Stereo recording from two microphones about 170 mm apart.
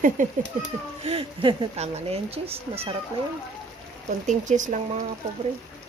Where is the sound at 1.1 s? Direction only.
35° right (ahead or behind).